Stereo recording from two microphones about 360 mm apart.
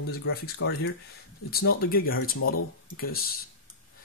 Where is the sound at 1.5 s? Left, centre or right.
Left.